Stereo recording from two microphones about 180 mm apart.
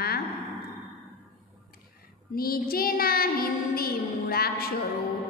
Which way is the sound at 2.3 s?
55° left (ahead or behind).